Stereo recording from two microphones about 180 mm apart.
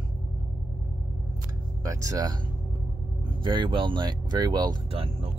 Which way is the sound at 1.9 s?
20° right (ahead or behind).